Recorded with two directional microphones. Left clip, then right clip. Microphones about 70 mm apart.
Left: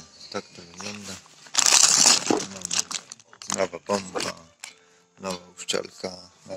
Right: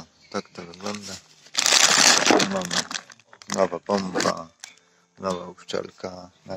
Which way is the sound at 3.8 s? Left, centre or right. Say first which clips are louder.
Right 4 dB; right.